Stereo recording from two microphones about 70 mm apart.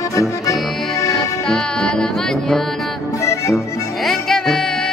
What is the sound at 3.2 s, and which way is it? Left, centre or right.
Music, left.